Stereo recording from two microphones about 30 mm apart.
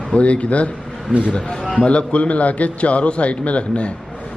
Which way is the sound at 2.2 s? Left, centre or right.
Left.